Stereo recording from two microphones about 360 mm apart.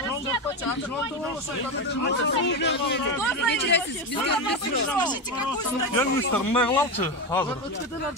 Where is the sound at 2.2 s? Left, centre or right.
Left.